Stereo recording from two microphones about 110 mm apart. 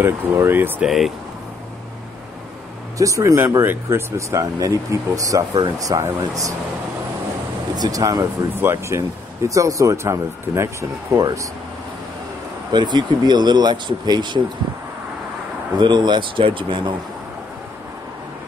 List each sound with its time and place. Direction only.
0.0 s speech: 20° right (ahead or behind)
0.8 s speech: centre (ahead or behind)
3.0 s speech: 30° right (ahead or behind)
7.7 s speech: 35° right (ahead or behind)
12.7 s speech: 40° right (ahead or behind)
15.8 s speech: 45° right (ahead or behind)